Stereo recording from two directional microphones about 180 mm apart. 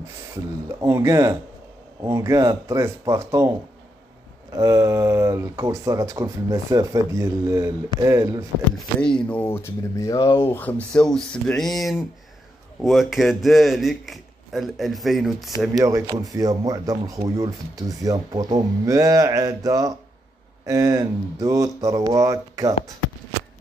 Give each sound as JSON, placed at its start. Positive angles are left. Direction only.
{"t": 0.7, "sound": "speech", "side_deg": -15}
{"t": 8.7, "sound": "a man's voice", "side_deg": 5}
{"t": 15.8, "sound": "speech", "side_deg": -15}